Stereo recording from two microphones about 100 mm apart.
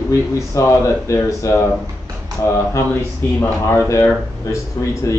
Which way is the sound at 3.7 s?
30° left (ahead or behind).